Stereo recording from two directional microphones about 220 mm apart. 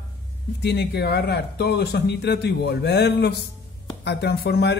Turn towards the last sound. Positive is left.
turn(degrees=50)  # may be behind; listen again after turning